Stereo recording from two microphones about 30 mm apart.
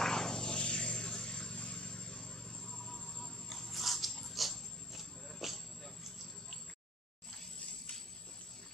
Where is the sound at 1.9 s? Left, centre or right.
Left.